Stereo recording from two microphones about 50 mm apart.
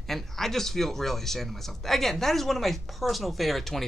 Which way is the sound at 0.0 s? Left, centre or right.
Centre.